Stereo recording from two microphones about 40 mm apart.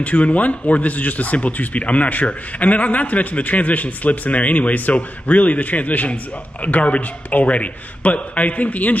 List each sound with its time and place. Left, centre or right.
0.0 s speech: left